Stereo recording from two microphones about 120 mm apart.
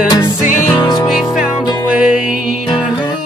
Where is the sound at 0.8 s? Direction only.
35° left (ahead or behind).